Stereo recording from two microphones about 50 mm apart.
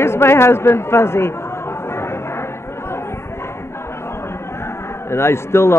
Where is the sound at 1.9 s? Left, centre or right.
Left.